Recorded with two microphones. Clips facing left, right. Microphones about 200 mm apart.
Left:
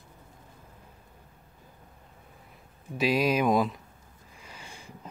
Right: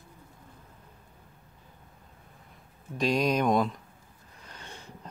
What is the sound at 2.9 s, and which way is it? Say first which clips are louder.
Speech: left 1 dB; 5° left (ahead or behind).